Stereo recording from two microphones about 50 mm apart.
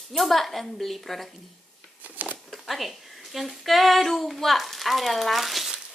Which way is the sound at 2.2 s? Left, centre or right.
Right.